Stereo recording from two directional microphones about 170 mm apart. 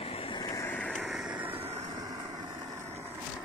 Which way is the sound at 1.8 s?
20° right (ahead or behind).